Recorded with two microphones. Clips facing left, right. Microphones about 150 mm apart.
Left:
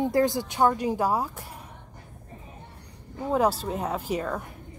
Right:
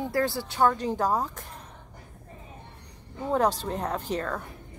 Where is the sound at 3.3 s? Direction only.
10° left (ahead or behind).